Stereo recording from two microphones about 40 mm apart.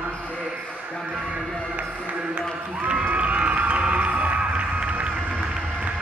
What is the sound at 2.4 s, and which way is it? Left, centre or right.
Speech, right.